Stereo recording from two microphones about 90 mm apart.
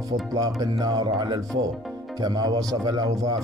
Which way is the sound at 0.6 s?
45° right (ahead or behind).